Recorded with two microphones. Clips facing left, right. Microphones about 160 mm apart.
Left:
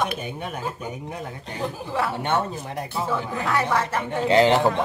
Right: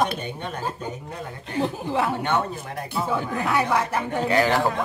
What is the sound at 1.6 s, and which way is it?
Speech, 20° right (ahead or behind).